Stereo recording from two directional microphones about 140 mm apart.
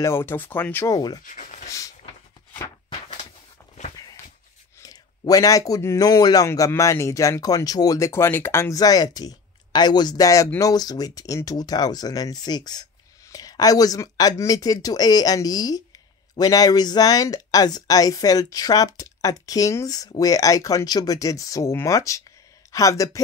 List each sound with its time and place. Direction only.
0.0 s speech: 15° left (ahead or behind)
0.8 s a man's voice: 25° left (ahead or behind)
1.2 s speech: 65° left (ahead or behind)
2.9 s a sound: 45° left (ahead or behind)
4.8 s a man's voice: 25° left (ahead or behind)